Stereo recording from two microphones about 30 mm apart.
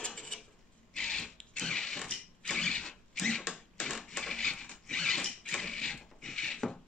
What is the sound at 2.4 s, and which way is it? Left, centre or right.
Mechanisms, centre.